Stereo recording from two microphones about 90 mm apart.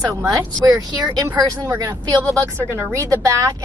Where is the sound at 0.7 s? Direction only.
40° right (ahead or behind).